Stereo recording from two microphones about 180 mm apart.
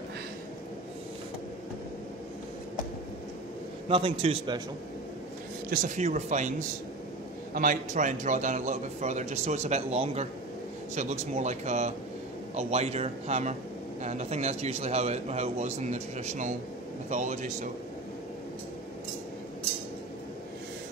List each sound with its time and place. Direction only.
3.9 s a man's voice: 30° right (ahead or behind)
5.7 s a man's voice: 45° right (ahead or behind)
7.5 s a man's voice: 50° right (ahead or behind)